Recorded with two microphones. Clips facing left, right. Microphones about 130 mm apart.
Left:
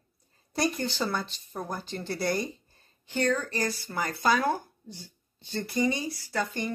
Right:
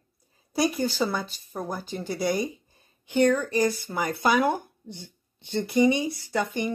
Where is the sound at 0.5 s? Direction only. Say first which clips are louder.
Right 4 dB; 5° right (ahead or behind).